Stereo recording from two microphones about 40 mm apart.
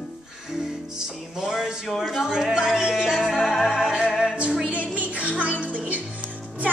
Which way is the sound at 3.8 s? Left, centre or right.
Centre.